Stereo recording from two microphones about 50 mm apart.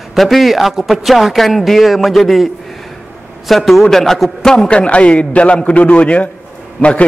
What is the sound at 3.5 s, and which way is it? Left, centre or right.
A man's voice, centre.